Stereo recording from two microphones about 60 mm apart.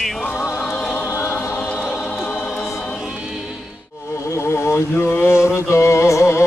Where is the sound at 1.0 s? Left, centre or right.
Left.